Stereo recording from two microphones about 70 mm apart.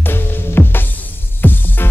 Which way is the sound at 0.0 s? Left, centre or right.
Left.